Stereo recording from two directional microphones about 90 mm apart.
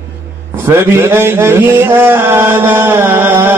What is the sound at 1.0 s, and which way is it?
Chant, 25° right (ahead or behind).